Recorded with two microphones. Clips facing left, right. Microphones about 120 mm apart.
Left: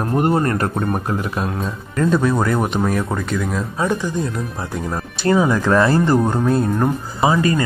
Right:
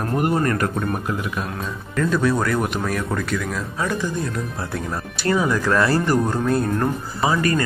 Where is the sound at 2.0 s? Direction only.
20° left (ahead or behind).